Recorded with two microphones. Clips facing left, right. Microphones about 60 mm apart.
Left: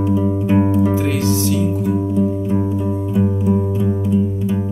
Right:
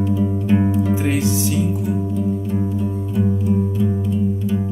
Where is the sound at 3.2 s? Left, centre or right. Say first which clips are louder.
Left 1 dB; left.